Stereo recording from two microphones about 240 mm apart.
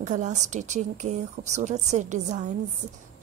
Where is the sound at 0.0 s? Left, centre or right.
Right.